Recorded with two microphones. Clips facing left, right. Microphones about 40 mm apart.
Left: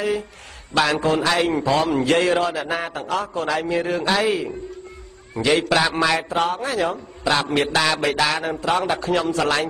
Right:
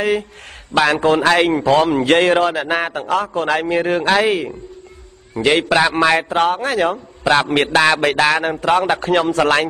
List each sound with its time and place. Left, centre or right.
0.0 s speech: right
0.7 s a man's voice: right
5.7 s a man's voice: right